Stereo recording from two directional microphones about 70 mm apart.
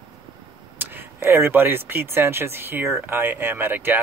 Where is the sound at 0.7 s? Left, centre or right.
Right.